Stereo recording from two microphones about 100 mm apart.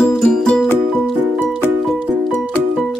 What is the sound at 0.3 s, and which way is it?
Music, 5° left (ahead or behind).